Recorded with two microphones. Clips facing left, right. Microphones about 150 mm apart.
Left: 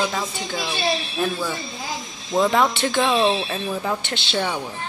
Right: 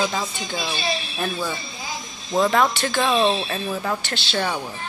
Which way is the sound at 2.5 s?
15° left (ahead or behind).